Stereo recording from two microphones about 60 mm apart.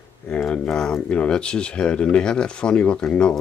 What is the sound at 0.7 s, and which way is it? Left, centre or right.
Speech, centre.